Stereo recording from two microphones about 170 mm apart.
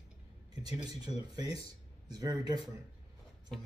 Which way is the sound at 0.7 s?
25° right (ahead or behind).